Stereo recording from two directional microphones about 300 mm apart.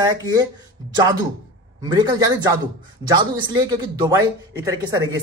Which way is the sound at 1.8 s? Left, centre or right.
Centre.